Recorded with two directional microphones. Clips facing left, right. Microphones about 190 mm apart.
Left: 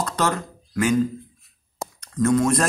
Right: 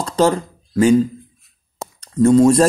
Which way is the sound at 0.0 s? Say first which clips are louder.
Right 8 dB; 30° right (ahead or behind).